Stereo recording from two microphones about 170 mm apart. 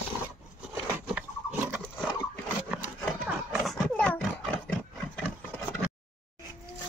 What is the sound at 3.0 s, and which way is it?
Pig, centre (ahead or behind).